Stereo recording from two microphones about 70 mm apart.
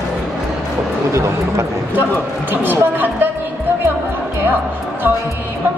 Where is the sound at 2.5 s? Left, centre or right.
Right.